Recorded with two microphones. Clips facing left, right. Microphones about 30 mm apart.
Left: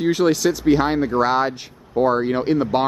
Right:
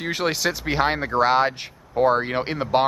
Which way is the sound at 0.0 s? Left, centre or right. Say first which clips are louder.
Left 6 dB; centre.